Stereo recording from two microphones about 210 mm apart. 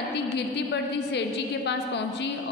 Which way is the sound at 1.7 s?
55° left (ahead or behind).